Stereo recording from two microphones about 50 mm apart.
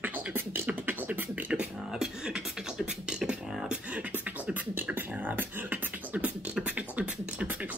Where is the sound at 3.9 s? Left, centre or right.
Right.